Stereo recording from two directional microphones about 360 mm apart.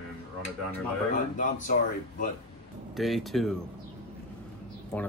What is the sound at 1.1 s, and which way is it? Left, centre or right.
Speech, left.